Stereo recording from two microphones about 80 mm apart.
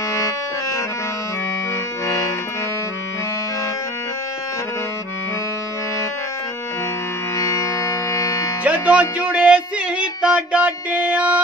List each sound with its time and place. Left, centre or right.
0.1 s music: left
2.0 s accordion: left
7.3 s music: left
8.6 s music: centre